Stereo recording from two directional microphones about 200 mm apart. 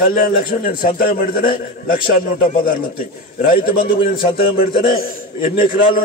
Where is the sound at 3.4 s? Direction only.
50° left (ahead or behind).